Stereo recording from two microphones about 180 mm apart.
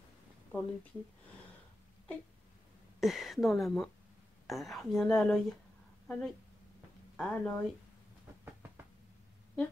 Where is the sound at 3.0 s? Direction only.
Centre (ahead or behind).